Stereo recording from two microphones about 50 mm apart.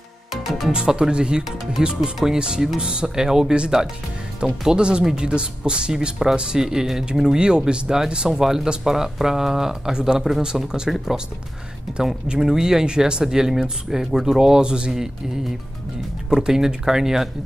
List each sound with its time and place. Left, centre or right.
0.3 s music: centre
0.7 s speech: centre
12.4 s speech: centre
16.3 s speech: centre